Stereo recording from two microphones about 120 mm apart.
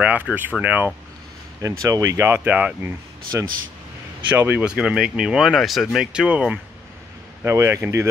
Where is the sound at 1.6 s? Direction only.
25° right (ahead or behind).